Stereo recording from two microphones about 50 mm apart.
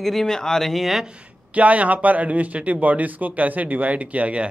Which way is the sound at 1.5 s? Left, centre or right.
Right.